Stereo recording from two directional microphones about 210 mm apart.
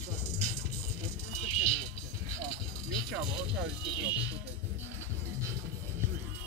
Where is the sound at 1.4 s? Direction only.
30° left (ahead or behind).